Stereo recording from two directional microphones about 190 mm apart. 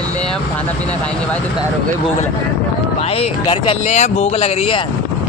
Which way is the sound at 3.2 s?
30° left (ahead or behind).